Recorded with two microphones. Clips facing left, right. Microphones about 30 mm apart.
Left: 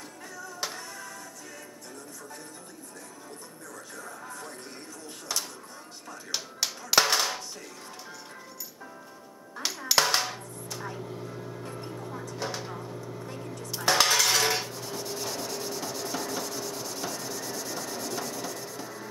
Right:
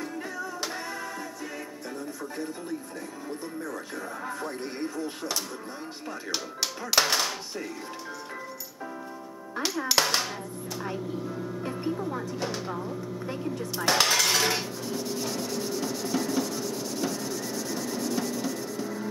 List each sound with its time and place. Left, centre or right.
0.7 s music: right
3.6 s speech: right
6.9 s speech: centre
9.8 s a sound: centre
11.1 s vehicle: centre
11.9 s speech: centre
12.4 s speech: centre
13.7 s dishes: centre